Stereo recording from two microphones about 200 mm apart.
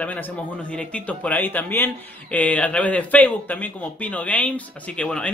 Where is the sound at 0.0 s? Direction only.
5° left (ahead or behind).